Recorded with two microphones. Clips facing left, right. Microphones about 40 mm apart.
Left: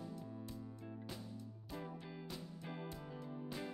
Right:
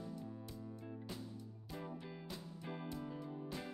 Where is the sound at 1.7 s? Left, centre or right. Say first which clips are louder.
Right 1 dB; centre.